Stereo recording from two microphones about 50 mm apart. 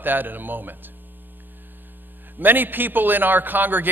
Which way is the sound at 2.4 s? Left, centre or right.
Right.